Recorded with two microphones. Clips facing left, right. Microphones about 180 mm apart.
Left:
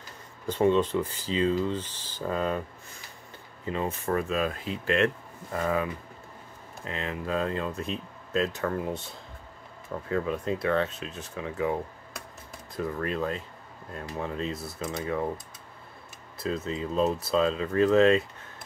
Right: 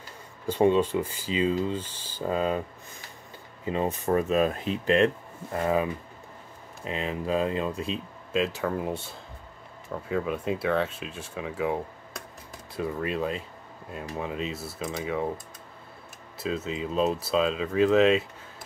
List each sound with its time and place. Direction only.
0.5 s speech: 10° right (ahead or behind)
2.2 s speech: 25° right (ahead or behind)
10.0 s speech: 10° right (ahead or behind)
12.7 s speech: 10° right (ahead or behind)